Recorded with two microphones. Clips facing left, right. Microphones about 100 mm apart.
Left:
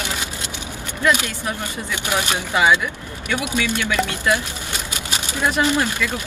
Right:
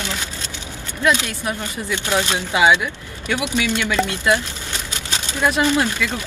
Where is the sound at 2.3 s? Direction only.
20° right (ahead or behind).